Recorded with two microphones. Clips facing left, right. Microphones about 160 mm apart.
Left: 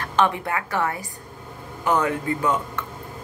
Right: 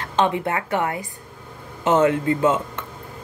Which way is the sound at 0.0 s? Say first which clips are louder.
Right 1 dB; 20° right (ahead or behind).